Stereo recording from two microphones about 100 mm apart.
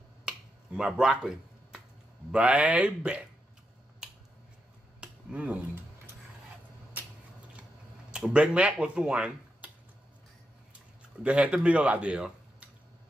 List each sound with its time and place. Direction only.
0.2 s finger snapping: 10° right (ahead or behind)
2.3 s speech: 15° right (ahead or behind)
5.0 s finger snapping: 10° right (ahead or behind)
7.0 s a sound: 20° right (ahead or behind)
8.1 s speech: 10° right (ahead or behind)
11.2 s speech: 10° right (ahead or behind)